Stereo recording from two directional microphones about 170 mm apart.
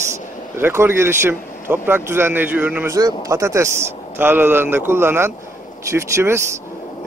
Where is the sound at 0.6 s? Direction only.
15° right (ahead or behind).